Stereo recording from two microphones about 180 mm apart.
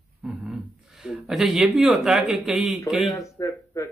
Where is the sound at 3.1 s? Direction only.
15° left (ahead or behind).